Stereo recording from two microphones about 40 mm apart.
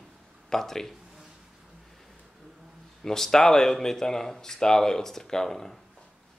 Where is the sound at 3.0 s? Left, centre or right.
Centre.